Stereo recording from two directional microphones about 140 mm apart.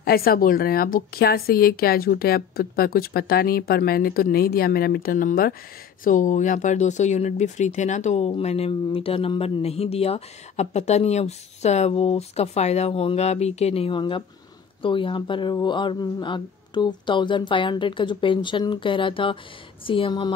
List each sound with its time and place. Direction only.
0.0 s a woman's voice: 90° left
6.0 s speech: 65° left (ahead or behind); by 20.3 s 35° left (ahead or behind)